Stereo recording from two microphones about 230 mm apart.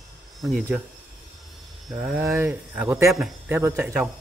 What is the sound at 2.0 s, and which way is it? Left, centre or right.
Speech, centre.